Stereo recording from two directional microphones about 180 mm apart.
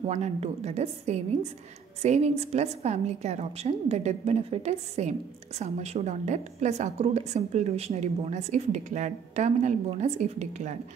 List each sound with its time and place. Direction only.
0.0 s a woman's voice: 35° right (ahead or behind)